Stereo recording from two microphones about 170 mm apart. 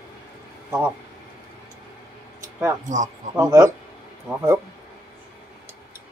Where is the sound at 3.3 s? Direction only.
20° right (ahead or behind).